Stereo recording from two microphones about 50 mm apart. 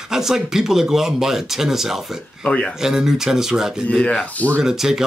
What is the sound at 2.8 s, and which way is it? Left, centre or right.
Speech, centre.